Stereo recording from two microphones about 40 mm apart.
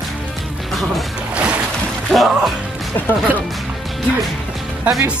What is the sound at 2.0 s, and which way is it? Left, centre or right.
Speech, centre.